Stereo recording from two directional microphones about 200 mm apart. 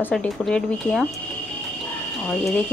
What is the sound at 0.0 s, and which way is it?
A woman's voice, 5° left (ahead or behind).